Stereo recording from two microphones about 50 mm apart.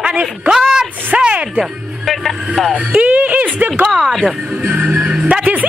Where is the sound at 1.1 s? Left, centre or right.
Right.